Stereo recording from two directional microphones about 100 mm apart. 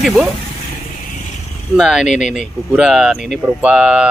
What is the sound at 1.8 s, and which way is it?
Speech, 5° right (ahead or behind).